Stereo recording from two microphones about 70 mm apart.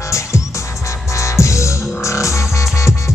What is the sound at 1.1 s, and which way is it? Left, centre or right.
Music, left.